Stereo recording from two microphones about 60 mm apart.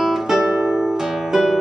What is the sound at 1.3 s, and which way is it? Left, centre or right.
Music, centre.